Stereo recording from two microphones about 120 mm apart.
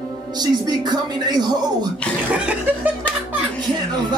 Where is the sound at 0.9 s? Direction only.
35° right (ahead or behind).